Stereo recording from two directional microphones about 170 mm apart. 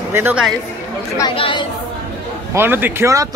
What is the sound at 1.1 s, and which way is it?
Speech, 30° left (ahead or behind).